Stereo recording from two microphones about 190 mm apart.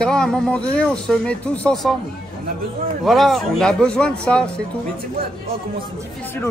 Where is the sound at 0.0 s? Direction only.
5° left (ahead or behind).